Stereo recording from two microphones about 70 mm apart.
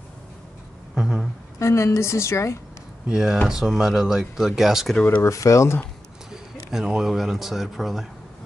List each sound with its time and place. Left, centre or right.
0.9 s a sound: centre
1.6 s a woman's voice: left
3.1 s speech: centre
5.2 s a woman's voice: left
6.3 s speech: centre